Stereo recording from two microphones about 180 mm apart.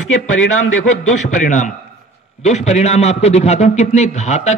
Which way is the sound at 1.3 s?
40° left (ahead or behind).